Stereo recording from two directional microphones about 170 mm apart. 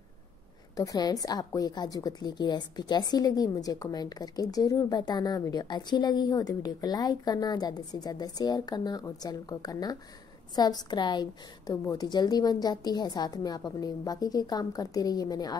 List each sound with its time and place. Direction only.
0.7 s a woman's voice: 20° left (ahead or behind)